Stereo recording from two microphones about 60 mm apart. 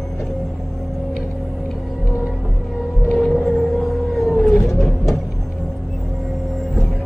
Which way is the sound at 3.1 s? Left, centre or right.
Centre.